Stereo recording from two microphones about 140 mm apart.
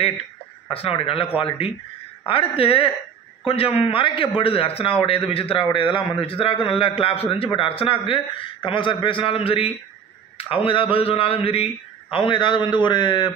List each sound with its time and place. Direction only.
0.0 s a man's voice: 45° left (ahead or behind)